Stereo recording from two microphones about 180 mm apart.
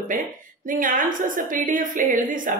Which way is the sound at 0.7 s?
50° right (ahead or behind).